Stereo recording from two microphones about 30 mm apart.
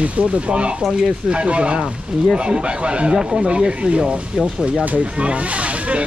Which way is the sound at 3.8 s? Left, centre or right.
Right.